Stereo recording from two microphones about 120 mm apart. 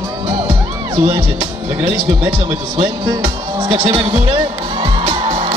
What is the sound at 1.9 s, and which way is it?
Speech, 15° right (ahead or behind).